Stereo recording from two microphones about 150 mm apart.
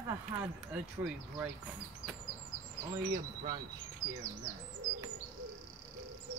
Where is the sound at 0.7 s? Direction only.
5° right (ahead or behind).